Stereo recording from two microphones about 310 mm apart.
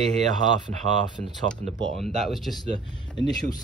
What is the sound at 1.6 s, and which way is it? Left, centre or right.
Speech, right.